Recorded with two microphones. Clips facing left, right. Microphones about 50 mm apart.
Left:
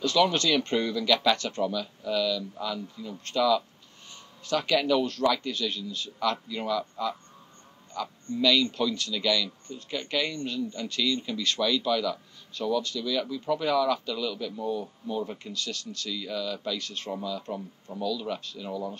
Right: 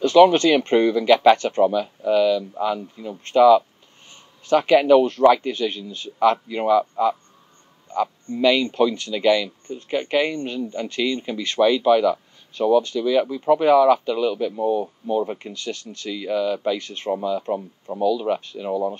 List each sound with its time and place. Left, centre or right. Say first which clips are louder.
0.0 s speech: right 11 dB; right